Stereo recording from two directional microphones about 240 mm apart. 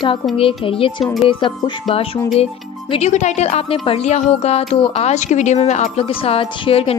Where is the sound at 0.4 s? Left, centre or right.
Left.